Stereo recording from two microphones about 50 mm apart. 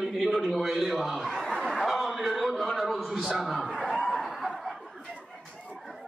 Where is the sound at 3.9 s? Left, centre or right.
Centre.